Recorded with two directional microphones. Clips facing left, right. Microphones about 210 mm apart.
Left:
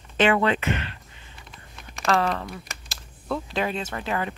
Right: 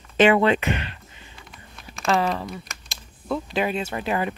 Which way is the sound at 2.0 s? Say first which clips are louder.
Right 1 dB; centre (ahead or behind).